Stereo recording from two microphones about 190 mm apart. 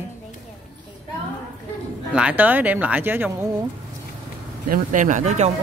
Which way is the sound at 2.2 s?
10° right (ahead or behind).